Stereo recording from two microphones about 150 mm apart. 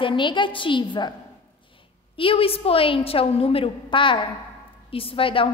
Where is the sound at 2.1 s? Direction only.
35° left (ahead or behind).